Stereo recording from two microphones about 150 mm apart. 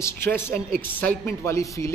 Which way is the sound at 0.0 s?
15° left (ahead or behind).